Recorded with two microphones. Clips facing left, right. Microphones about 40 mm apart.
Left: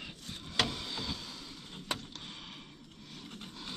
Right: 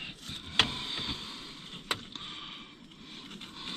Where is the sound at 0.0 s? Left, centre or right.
Right.